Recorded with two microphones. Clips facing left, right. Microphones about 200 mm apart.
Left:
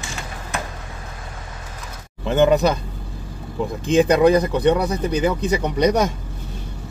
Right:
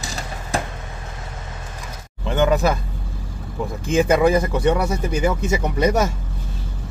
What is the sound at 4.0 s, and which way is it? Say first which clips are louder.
Speech: left 2 dB; 5° right (ahead or behind).